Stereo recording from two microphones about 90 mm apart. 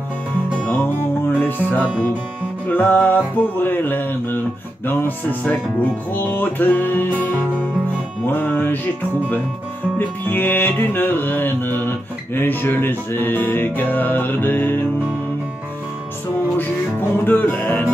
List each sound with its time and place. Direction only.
0.7 s music: 20° left (ahead or behind)
8.3 s music: 20° left (ahead or behind)
9.9 s music: 25° left (ahead or behind)
17.2 s music: 20° left (ahead or behind)